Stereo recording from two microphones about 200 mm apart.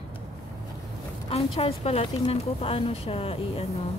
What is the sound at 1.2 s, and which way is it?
A woman's voice, 30° left (ahead or behind).